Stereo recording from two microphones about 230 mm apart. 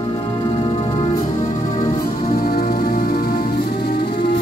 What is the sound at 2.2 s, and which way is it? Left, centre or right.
Music, left.